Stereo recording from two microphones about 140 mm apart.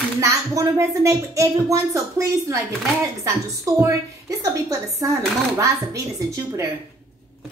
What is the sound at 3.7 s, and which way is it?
Speech, 25° right (ahead or behind).